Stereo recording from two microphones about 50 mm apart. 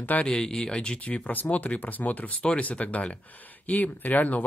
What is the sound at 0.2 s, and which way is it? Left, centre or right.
Speech, centre.